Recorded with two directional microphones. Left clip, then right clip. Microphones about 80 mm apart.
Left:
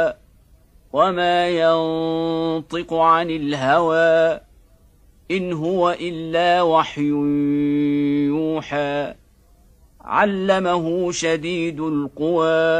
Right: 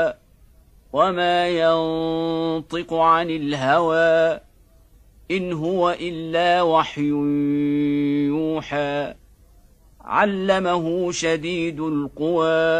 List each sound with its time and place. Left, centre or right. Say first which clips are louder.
1.1 s a man's voice: left 1 dB; right
10.0 s a sound: left 1 dB; right
10.3 s a man's voice: left 1 dB; right